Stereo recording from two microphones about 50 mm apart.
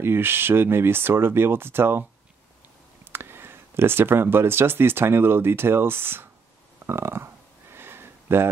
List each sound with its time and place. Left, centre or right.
0.0 s speech: right
3.1 s speech: right
6.9 s a sound: right